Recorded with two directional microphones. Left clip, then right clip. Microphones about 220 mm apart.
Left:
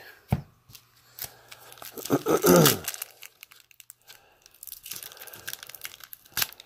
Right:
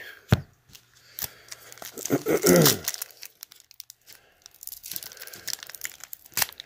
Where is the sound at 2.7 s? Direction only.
10° right (ahead or behind).